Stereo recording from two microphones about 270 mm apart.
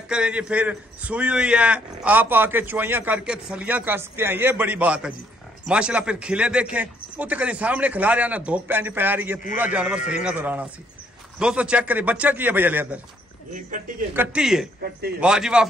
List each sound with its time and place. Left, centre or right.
0.1 s a man's voice: centre
13.7 s speech: right
14.1 s a man's voice: centre
14.8 s a man's voice: right
15.1 s a man's voice: centre